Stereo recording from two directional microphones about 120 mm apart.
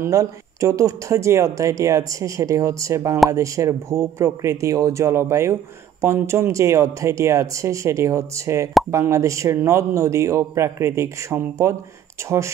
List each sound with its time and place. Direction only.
0.0 s speech: 25° right (ahead or behind)